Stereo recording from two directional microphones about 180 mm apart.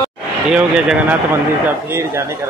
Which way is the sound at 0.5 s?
5° right (ahead or behind).